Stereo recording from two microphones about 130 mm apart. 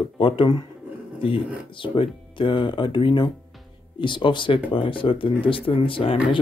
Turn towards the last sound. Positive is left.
turn(degrees=45)  # may be behind; listen again after turning